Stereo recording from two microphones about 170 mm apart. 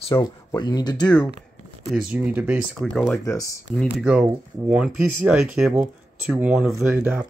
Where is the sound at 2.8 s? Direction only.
5° left (ahead or behind).